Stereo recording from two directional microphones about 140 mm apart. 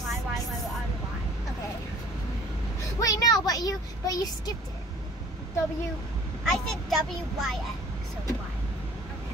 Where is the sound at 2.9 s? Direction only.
25° left (ahead or behind).